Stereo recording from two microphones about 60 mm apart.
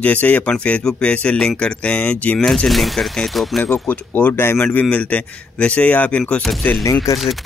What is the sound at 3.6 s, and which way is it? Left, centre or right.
Speech, left.